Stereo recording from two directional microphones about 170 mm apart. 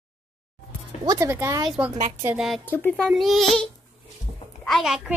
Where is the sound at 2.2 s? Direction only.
Centre (ahead or behind).